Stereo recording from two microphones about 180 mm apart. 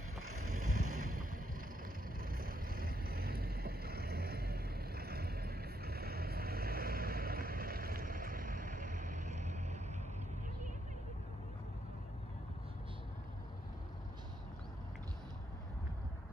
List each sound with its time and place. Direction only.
0.5 s vehicle: 45° right (ahead or behind)